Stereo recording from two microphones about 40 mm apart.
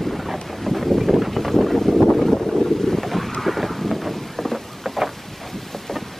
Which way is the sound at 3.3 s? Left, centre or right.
Centre.